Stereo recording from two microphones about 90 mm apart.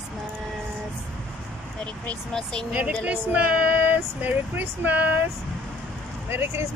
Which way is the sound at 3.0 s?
15° right (ahead or behind).